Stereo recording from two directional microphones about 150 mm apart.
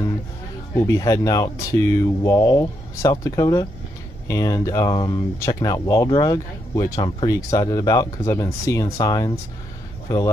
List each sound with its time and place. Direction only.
0.7 s speech: 20° left (ahead or behind)